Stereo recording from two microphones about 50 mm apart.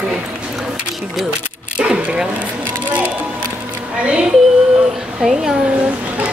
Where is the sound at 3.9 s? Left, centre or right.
Right.